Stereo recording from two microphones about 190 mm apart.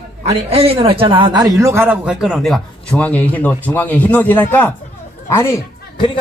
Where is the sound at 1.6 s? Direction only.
10° right (ahead or behind); by 4.7 s 10° left (ahead or behind).